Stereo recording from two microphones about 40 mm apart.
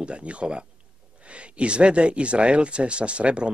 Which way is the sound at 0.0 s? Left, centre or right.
Right.